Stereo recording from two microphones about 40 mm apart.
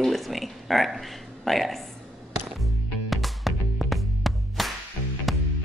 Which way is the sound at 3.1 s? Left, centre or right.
Centre.